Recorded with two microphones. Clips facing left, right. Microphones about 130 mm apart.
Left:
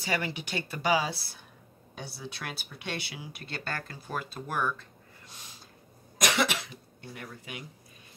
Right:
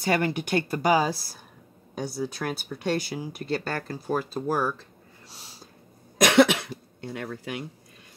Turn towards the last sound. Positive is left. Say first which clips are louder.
# right 9 dB
turn(degrees=-65)  # may be behind; listen again after turning